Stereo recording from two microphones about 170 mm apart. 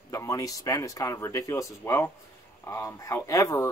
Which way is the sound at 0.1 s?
20° left (ahead or behind).